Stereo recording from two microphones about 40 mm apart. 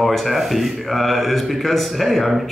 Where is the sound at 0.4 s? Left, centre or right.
Centre.